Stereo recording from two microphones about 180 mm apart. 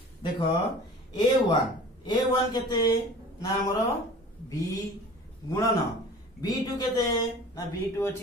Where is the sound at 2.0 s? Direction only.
25° left (ahead or behind).